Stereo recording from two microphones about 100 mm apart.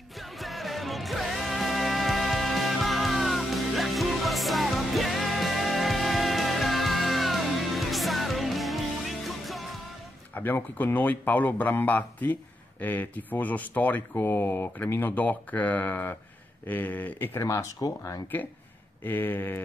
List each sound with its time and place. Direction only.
0.2 s music: centre (ahead or behind)
10.3 s speech: 20° left (ahead or behind); by 18.2 s 35° left (ahead or behind)
19.0 s speech: 20° left (ahead or behind)